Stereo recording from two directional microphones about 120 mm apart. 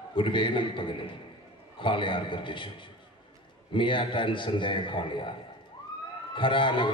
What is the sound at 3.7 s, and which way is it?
A man's voice, 45° left (ahead or behind).